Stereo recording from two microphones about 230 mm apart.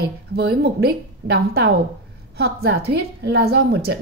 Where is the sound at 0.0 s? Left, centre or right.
Right.